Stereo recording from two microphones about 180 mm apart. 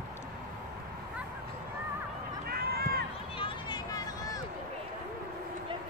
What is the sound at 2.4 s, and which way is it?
Run, 55° right (ahead or behind).